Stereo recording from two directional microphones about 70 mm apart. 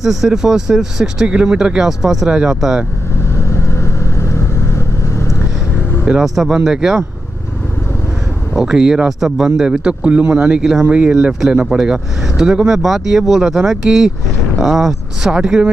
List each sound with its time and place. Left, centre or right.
0.0 s speech: centre
3.4 s vehicle: left
6.0 s speech: centre
8.5 s speech: centre
15.3 s speech: centre